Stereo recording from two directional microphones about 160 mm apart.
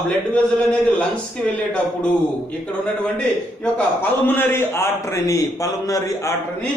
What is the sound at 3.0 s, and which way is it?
A man's voice, 5° left (ahead or behind).